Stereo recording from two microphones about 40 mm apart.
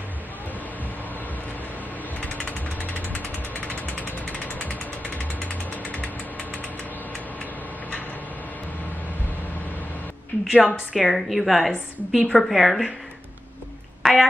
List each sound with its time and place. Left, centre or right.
2.4 s vehicle: left
5.7 s ratchet: left
10.4 s a woman's voice: centre
14.0 s a sound: centre